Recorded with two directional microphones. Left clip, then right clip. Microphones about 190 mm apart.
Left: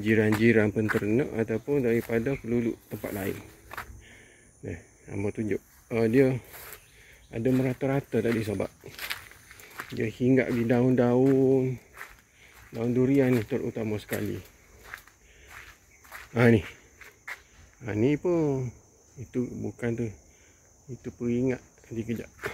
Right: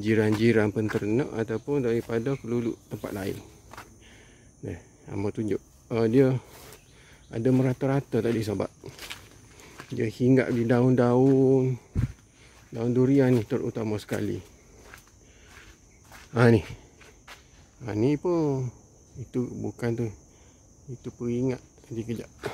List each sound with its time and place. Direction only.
0.0 s speech: 20° right (ahead or behind)
4.6 s speech: 20° right (ahead or behind)
8.9 s a sound: 15° left (ahead or behind)
9.9 s speech: 25° right (ahead or behind)
16.3 s speech: 20° right (ahead or behind)
17.8 s speech: 15° right (ahead or behind)
19.3 s speech: 25° right (ahead or behind)
21.0 s speech: 15° right (ahead or behind)